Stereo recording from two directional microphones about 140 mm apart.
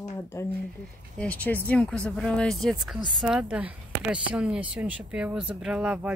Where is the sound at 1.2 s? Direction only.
10° left (ahead or behind).